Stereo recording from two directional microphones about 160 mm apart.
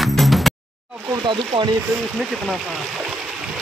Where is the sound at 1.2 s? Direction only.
30° right (ahead or behind).